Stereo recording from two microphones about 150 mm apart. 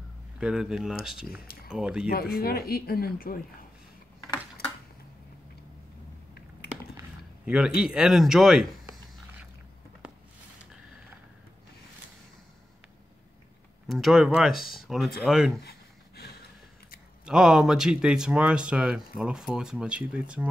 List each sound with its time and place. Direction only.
0.4 s speech: 5° right (ahead or behind)
2.3 s speech: 90° left
7.4 s speech: 5° right (ahead or behind)
7.8 s a sound: 5° right (ahead or behind)
13.8 s speech: centre (ahead or behind)
17.2 s speech: 5° right (ahead or behind)